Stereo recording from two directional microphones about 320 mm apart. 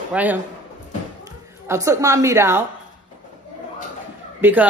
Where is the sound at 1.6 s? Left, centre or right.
Centre.